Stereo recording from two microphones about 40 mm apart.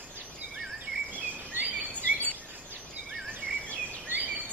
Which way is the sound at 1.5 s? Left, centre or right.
Right.